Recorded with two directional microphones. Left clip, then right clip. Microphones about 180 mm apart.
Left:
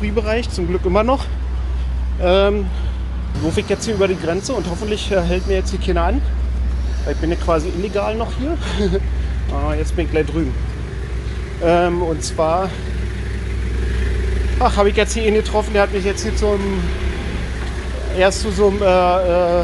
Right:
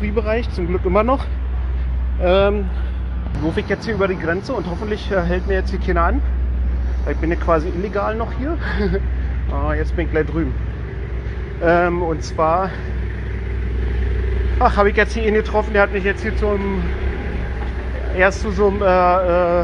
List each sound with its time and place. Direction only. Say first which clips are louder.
0.0 s speech: left 1 dB; 15° left (ahead or behind)
2.2 s speech: left 1 dB; 15° left (ahead or behind)
3.5 s speech: left 3 dB; 25° left (ahead or behind)
11.6 s speech: even; 20° left (ahead or behind)
14.6 s speech: even; 15° left (ahead or behind)
15.5 s speech: even; 5° left (ahead or behind)
18.1 s speech: left 1 dB; 15° left (ahead or behind)